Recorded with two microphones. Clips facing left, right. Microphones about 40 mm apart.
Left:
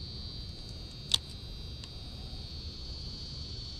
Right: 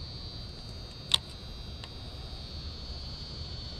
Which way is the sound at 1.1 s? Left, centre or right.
Right.